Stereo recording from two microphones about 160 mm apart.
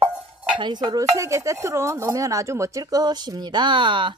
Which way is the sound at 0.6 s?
25° right (ahead or behind).